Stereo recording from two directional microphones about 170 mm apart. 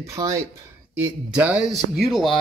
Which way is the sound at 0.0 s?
20° right (ahead or behind).